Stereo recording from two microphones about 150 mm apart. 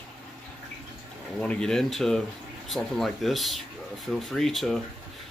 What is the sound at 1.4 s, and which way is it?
Speech, 5° left (ahead or behind).